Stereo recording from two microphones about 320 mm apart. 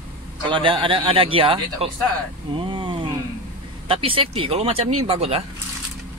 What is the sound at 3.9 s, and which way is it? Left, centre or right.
Speech, centre.